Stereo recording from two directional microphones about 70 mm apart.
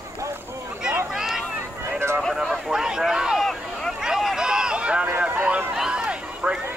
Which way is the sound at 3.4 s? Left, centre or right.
Centre.